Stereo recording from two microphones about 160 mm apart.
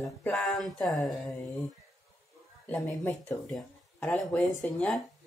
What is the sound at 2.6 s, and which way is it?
Speech, 10° left (ahead or behind).